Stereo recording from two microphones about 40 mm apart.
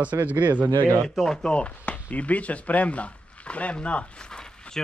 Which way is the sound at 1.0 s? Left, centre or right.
Centre.